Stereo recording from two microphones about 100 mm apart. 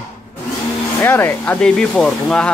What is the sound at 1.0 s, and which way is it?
Speech, 20° left (ahead or behind).